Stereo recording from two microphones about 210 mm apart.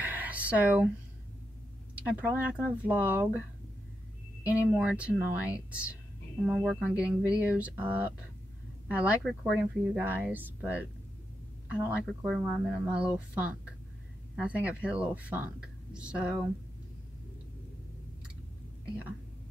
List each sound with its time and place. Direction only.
0.0 s a sound: 10° right (ahead or behind)
2.0 s speech: 5° right (ahead or behind)
4.5 s speech: 5° right (ahead or behind)